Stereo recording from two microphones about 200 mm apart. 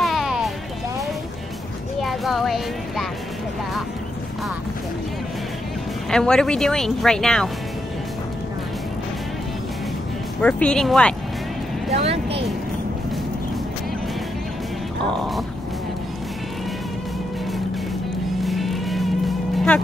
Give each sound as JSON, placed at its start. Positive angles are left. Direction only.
{"t": 0.0, "sound": "music", "side_deg": 0}
{"t": 2.0, "sound": "speech", "side_deg": 0}
{"t": 6.0, "sound": "speech", "side_deg": 5}
{"t": 10.4, "sound": "speech", "side_deg": 5}
{"t": 12.0, "sound": "speech", "side_deg": -30}
{"t": 18.4, "sound": "music", "side_deg": 0}